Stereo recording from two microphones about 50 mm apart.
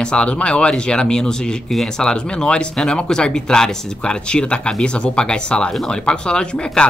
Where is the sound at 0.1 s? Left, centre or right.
Left.